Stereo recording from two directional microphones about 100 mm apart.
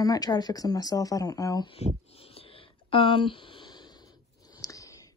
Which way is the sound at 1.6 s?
75° left (ahead or behind).